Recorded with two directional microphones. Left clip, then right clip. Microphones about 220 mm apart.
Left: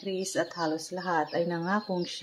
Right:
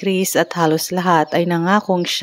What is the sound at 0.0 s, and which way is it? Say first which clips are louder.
A woman's voice: right 13 dB; 45° right (ahead or behind).